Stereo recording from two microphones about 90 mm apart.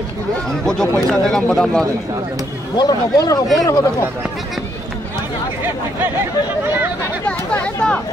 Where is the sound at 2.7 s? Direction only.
50° left (ahead or behind).